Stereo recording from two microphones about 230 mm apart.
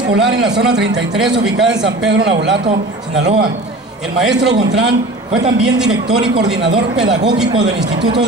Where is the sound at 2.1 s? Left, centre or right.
Right.